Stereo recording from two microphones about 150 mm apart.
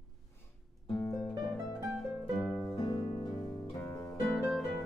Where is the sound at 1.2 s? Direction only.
Centre (ahead or behind).